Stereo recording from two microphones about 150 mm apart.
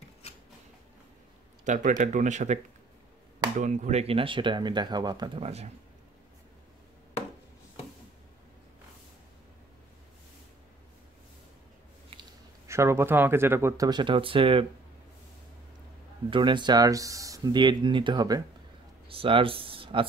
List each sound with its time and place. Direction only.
1.6 s speech: 55° right (ahead or behind); by 5.4 s 30° right (ahead or behind)
5.4 s speech: 45° right (ahead or behind)
12.6 s speech: 20° right (ahead or behind)
13.8 s speech: 30° right (ahead or behind)
16.3 s speech: 30° right (ahead or behind)